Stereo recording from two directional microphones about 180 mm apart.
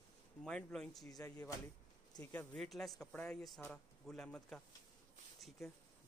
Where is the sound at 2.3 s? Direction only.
5° left (ahead or behind).